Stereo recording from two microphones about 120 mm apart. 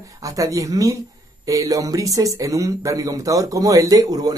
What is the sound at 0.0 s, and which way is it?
Speech, 30° right (ahead or behind).